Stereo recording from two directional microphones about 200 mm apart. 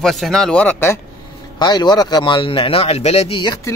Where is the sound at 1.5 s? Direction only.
20° left (ahead or behind).